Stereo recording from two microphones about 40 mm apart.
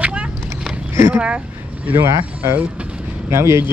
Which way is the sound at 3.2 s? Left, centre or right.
Right.